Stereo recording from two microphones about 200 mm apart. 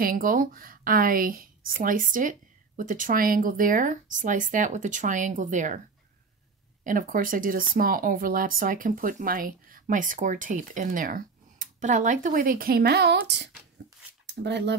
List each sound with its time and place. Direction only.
0.0 s speech: 45° right (ahead or behind)
6.8 s speech: 40° right (ahead or behind); by 14.8 s 60° right (ahead or behind)